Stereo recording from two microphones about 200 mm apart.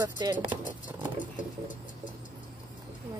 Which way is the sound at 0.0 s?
20° right (ahead or behind).